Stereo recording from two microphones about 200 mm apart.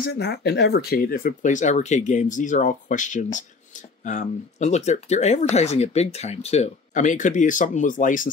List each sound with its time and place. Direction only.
0.1 s speech: 55° left (ahead or behind)